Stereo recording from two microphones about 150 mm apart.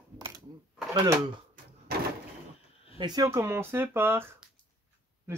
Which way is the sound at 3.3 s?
15° right (ahead or behind).